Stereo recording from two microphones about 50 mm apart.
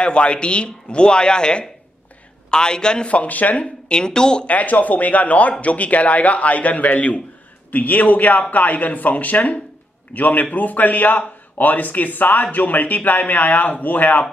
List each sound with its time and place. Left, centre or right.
0.0 s a man's voice: left
3.1 s speech: left
4.5 s a man's voice: left